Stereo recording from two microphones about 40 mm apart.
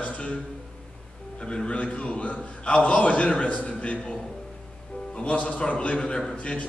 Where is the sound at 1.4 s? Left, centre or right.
Left.